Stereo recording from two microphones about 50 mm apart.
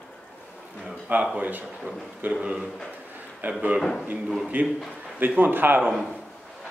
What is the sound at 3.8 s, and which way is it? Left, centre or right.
Speech, centre.